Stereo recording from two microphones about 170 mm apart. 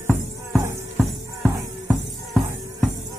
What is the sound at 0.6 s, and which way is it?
Music, 15° right (ahead or behind).